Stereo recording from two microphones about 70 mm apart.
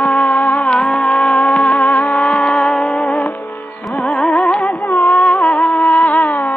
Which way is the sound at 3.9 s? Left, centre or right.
Centre.